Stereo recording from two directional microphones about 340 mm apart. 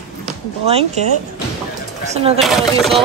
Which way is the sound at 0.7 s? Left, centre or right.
Centre.